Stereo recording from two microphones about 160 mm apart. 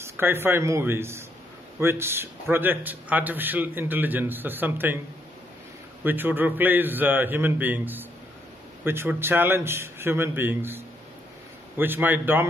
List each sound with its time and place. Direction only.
0.0 s a man's voice: 15° right (ahead or behind)
6.0 s a man's voice: 10° right (ahead or behind)